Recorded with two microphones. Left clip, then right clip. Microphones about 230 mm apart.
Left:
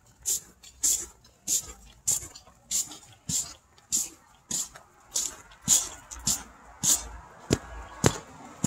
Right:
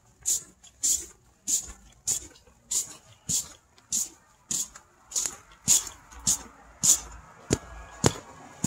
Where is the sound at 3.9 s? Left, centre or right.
Centre.